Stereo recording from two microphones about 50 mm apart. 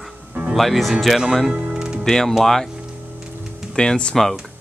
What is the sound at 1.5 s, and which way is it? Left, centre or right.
Music, centre.